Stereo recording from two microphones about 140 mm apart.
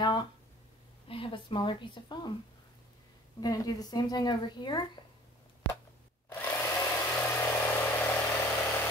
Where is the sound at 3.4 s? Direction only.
30° left (ahead or behind).